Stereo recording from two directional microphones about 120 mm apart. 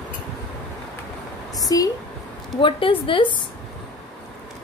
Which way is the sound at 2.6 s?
45° left (ahead or behind).